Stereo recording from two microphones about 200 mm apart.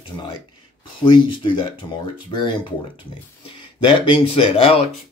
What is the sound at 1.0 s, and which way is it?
Speech, 25° left (ahead or behind).